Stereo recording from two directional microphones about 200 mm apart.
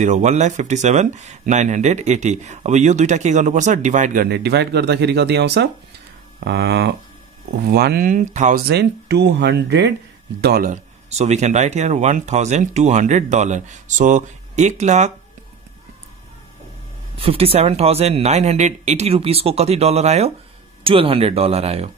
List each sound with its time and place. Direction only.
0.0 s speech: 35° right (ahead or behind)
8.6 s speech: 55° right (ahead or behind)
11.1 s speech: 35° right (ahead or behind)
17.2 s speech: 30° right (ahead or behind)